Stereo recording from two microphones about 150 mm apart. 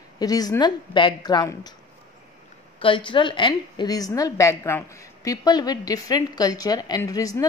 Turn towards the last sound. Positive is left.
turn(degrees=25)  # may be behind; listen again after turning